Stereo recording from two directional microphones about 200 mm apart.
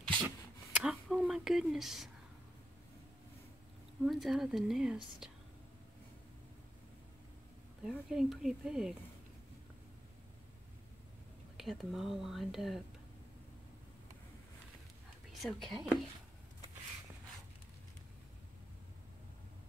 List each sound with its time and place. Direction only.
0.7 s a sound: 5° right (ahead or behind)
4.0 s speech: centre (ahead or behind)
7.8 s speech: centre (ahead or behind)
11.5 s speech: centre (ahead or behind)
15.4 s speech: centre (ahead or behind)